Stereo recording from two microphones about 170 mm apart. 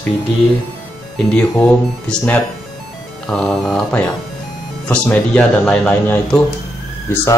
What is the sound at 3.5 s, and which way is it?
Speech, 5° left (ahead or behind).